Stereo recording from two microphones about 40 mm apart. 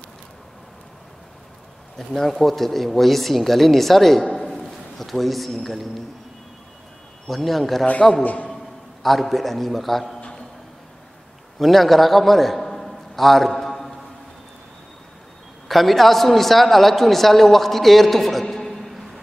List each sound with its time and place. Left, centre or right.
2.0 s speech: centre
4.4 s a sound: centre
7.2 s speech: centre
8.2 s a man's voice: left
9.0 s speech: centre
11.5 s a sound: centre
15.7 s a man's voice: centre